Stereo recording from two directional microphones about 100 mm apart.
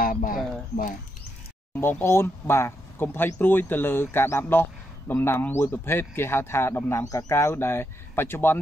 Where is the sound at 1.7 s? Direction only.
25° left (ahead or behind).